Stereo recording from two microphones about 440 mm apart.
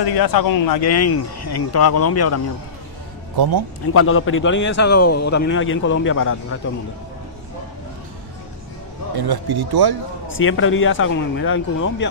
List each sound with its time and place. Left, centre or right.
0.0 s speech: left
3.3 s speech: right
3.9 s speech: left
9.1 s speech: right
10.2 s speech: left